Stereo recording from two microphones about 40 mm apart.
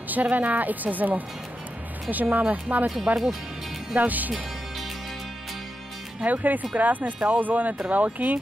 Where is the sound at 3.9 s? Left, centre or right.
Right.